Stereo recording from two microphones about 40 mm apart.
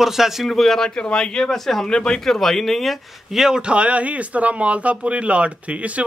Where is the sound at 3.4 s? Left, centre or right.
Right.